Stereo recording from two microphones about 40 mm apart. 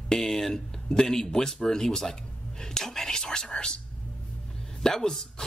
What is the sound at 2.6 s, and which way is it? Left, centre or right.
Whispering, centre.